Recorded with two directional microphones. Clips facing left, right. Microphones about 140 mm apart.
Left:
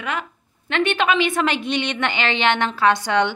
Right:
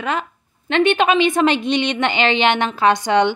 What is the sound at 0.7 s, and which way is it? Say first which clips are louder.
A woman's voice: right 4 dB; 20° right (ahead or behind).